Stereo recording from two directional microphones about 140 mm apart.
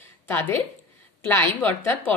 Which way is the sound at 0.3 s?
15° left (ahead or behind).